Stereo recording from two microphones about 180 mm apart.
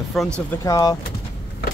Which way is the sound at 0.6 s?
20° left (ahead or behind).